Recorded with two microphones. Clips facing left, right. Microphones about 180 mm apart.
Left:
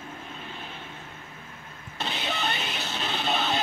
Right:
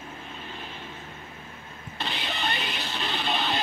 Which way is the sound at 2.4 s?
45° left (ahead or behind).